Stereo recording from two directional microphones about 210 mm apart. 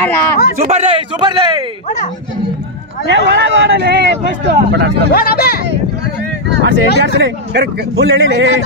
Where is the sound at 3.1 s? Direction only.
55° right (ahead or behind).